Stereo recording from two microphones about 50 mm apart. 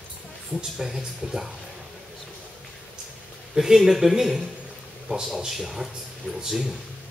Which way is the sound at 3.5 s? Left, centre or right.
Centre.